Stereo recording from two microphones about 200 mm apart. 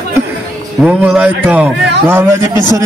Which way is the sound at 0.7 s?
5° right (ahead or behind).